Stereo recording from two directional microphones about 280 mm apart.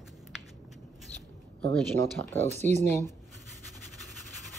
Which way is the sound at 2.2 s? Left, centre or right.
Right.